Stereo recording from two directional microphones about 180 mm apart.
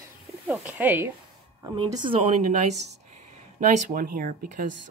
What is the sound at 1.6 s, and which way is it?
Speech, 25° right (ahead or behind).